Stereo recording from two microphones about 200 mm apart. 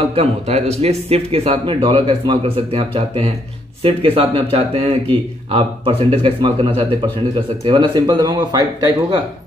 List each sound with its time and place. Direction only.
0.1 s speech: 30° right (ahead or behind)